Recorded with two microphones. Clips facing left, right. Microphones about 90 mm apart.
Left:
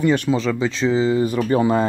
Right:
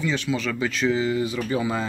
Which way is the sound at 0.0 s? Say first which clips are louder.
Left 8 dB; 50° left (ahead or behind).